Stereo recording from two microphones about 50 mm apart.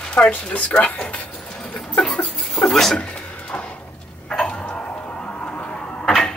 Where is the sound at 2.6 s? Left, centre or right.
Centre.